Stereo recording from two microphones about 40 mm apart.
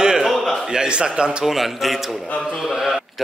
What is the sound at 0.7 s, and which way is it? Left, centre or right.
Speech, right.